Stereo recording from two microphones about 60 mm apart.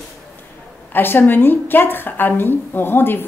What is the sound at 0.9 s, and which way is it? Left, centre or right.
A woman's voice, left.